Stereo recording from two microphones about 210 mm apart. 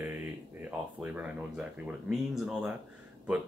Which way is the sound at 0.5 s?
5° right (ahead or behind).